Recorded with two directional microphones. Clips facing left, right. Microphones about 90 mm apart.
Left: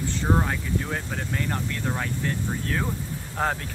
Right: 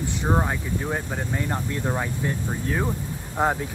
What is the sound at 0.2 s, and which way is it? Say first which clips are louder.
Speech: right 1 dB; 15° right (ahead or behind).